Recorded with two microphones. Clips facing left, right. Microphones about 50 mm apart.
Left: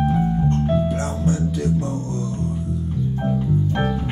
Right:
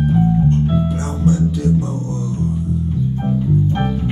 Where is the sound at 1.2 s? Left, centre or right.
Left.